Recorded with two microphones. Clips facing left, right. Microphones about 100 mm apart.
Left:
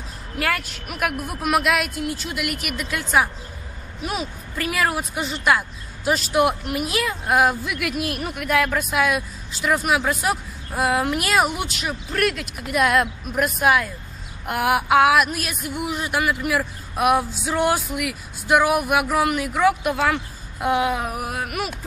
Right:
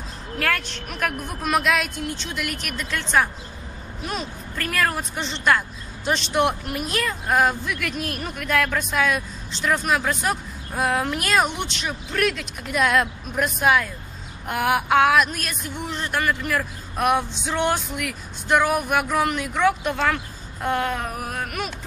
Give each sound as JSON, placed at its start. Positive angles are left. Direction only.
{"t": 0.4, "sound": "speech", "side_deg": 5}